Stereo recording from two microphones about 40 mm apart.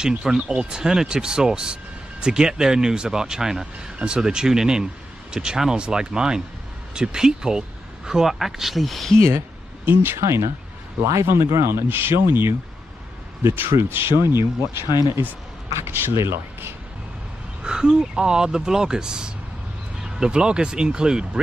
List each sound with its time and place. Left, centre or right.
0.2 s speech: centre
9.8 s speech: right
11.2 s speech: right
17.6 s speech: centre